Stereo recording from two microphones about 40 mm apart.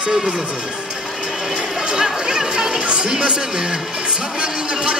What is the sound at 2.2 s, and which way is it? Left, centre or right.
Speech, right.